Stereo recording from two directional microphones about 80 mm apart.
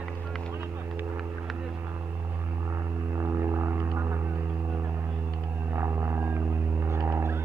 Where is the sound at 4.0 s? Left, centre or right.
Right.